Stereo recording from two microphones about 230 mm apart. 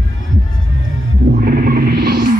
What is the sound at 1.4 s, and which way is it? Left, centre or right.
Music, right.